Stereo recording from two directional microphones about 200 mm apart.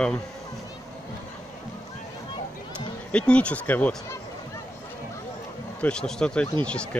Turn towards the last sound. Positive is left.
turn(degrees=5)  # may be behind; listen again after turning